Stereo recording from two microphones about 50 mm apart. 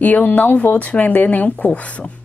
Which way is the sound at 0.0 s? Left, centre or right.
Left.